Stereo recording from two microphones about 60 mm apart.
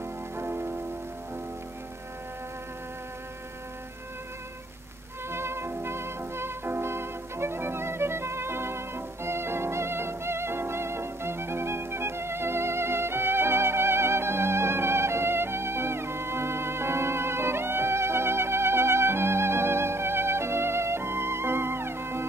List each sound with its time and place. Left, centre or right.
0.4 s music: right
5.3 s music: right